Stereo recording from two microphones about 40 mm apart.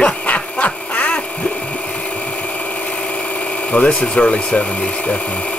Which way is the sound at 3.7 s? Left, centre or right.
Left.